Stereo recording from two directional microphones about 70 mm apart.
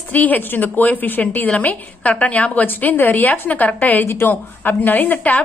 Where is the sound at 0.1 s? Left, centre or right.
Left.